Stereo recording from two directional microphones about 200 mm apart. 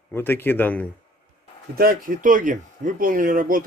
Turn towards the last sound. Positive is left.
turn(degrees=-45)  # may be behind; listen again after turning